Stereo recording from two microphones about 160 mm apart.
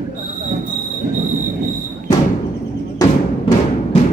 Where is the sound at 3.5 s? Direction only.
35° left (ahead or behind).